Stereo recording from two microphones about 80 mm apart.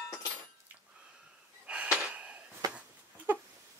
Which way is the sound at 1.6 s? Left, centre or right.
Centre.